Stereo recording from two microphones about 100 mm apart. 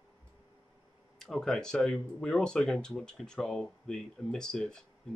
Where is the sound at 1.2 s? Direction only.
5° left (ahead or behind).